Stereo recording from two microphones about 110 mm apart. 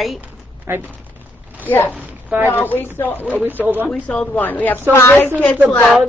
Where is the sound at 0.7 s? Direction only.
25° right (ahead or behind).